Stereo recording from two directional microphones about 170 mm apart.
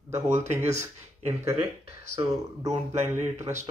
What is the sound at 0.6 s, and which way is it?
Speech, 40° right (ahead or behind).